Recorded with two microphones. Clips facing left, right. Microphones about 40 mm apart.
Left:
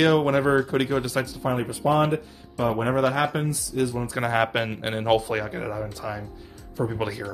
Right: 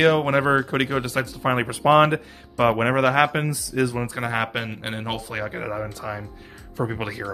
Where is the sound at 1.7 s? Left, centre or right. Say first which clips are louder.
Right 6 dB; right.